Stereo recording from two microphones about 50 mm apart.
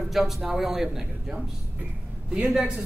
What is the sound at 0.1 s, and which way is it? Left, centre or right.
A man's voice, centre.